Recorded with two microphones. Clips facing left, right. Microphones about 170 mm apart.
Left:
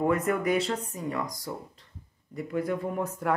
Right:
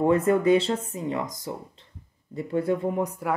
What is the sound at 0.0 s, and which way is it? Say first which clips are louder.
Speech: right 5 dB; 30° right (ahead or behind).